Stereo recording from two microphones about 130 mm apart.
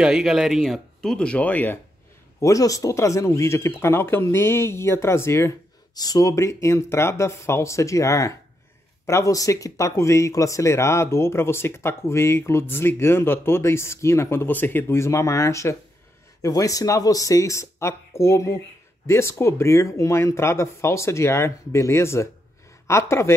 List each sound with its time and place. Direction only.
0.0 s speech: 5° right (ahead or behind); by 1.8 s 15° left (ahead or behind)
2.4 s speech: 25° left (ahead or behind)